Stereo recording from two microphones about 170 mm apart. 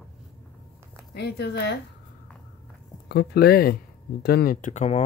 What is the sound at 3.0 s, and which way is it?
Speech, 70° left (ahead or behind).